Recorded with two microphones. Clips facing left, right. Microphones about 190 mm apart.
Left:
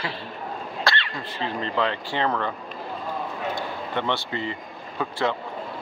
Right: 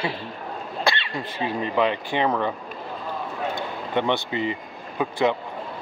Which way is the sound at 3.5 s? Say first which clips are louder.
Right 3 dB; 15° right (ahead or behind).